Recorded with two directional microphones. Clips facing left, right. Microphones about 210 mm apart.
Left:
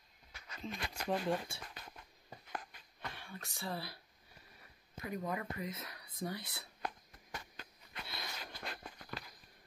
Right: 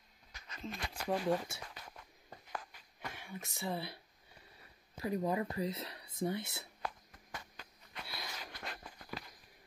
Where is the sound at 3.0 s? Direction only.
15° right (ahead or behind).